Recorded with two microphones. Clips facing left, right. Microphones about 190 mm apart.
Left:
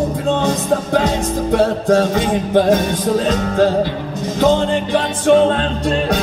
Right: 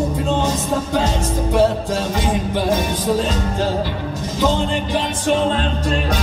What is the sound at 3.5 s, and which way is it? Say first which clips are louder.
Music: left 6 dB; 60° left (ahead or behind).